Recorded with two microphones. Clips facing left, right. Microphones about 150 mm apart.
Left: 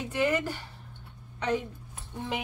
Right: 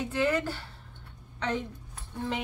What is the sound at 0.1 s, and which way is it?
Speech, 10° left (ahead or behind).